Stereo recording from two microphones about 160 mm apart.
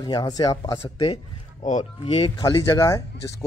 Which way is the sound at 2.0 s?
30° left (ahead or behind).